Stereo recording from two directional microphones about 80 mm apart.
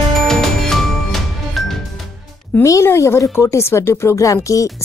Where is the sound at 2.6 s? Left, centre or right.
Left.